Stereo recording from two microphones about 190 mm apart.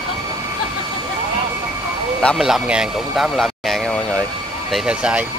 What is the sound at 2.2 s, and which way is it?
Speech, centre (ahead or behind).